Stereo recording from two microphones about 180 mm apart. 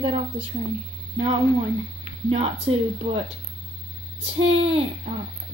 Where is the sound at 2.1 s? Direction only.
35° right (ahead or behind).